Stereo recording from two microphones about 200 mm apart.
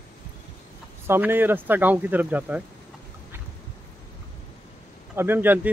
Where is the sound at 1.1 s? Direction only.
10° right (ahead or behind).